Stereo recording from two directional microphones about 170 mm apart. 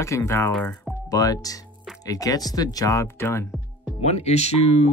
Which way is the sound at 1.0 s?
20° left (ahead or behind).